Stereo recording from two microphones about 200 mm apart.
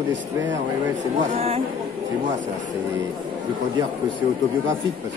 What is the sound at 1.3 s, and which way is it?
Speech, 30° right (ahead or behind).